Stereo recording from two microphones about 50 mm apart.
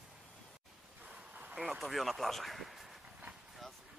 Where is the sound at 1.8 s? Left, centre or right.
Centre.